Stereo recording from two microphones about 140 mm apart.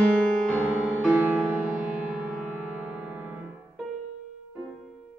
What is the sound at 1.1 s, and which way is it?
Music, 10° right (ahead or behind).